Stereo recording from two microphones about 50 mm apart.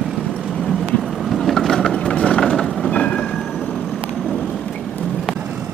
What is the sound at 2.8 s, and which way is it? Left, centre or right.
Train, left.